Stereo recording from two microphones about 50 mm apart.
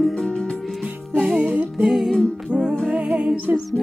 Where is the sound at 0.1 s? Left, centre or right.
Centre.